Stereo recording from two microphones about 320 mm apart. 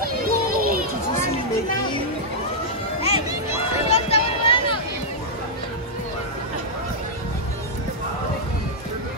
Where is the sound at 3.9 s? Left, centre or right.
Centre.